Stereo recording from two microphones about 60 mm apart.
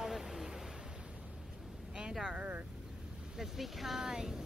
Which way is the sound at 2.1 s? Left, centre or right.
Centre.